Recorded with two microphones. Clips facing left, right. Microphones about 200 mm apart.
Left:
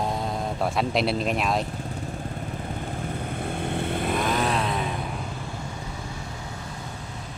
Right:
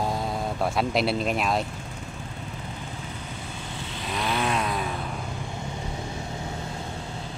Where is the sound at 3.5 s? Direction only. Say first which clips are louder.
Left 9 dB; 60° left (ahead or behind).